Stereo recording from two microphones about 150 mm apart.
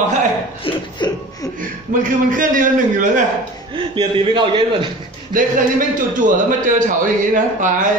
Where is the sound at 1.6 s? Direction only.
60° right (ahead or behind).